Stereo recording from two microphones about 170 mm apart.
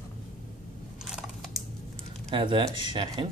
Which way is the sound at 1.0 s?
5° right (ahead or behind).